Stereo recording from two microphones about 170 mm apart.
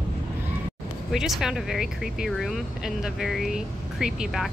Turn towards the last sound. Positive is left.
turn(degrees=0)  # may be behind; listen again after turning